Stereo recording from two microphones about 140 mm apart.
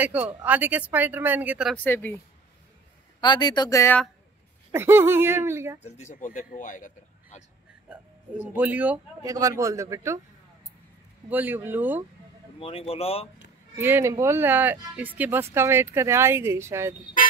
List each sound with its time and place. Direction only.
0.0 s speech: 10° right (ahead or behind)
1.8 s speech: 10° left (ahead or behind)
3.2 s speech: 30° left (ahead or behind)
4.7 s speech: 15° right (ahead or behind)
5.8 s speech: 55° left (ahead or behind)
6.1 s speech: 65° left (ahead or behind)
8.5 s speech: 10° right (ahead or behind)
9.2 s a man's voice: 25° right (ahead or behind)
11.2 s speech: 15° right (ahead or behind)
12.5 s speech: 45° left (ahead or behind)
13.7 s speech: 15° right (ahead or behind)